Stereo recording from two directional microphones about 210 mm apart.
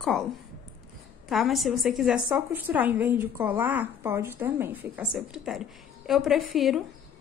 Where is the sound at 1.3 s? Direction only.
Centre (ahead or behind).